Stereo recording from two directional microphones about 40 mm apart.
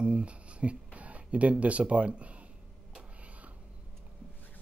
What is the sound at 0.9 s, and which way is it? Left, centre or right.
Speech, right.